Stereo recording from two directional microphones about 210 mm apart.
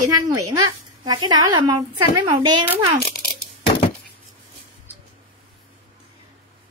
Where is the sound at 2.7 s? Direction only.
Centre (ahead or behind).